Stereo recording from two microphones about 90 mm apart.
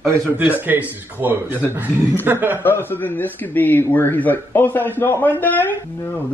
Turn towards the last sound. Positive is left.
turn(degrees=25)  # may be behind; listen again after turning